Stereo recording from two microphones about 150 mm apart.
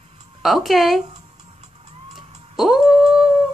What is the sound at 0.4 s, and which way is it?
Speech, centre (ahead or behind).